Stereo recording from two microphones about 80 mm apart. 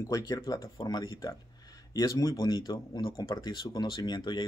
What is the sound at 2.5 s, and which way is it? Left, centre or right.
Speech, left.